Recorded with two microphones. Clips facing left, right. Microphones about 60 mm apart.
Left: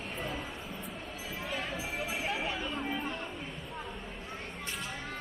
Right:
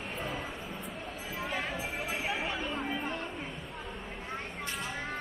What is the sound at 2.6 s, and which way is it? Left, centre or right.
Chatter, centre.